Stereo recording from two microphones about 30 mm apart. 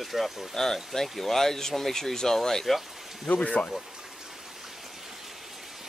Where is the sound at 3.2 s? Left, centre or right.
Left.